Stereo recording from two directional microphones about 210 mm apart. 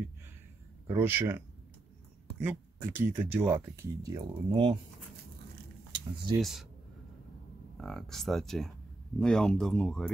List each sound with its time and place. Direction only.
0.8 s speech: 10° right (ahead or behind)
2.4 s speech: 10° right (ahead or behind)
5.9 s a sound: 20° right (ahead or behind)
6.4 s speech: centre (ahead or behind)
7.7 s speech: centre (ahead or behind)